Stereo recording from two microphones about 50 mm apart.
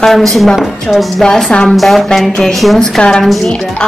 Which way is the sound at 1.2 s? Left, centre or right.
Centre.